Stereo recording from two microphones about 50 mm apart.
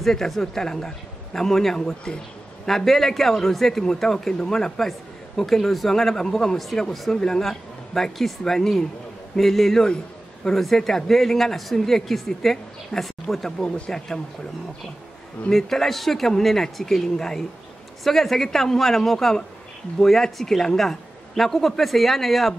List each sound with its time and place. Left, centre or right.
0.0 s a man's voice: centre
15.5 s a man's voice: centre